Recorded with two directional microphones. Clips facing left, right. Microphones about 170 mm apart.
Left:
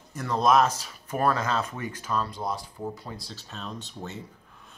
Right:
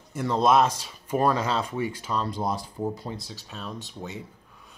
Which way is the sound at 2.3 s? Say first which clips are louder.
Right 3 dB; 35° right (ahead or behind).